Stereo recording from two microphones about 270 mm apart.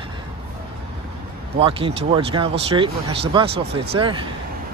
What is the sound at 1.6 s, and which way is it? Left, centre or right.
Speech, centre.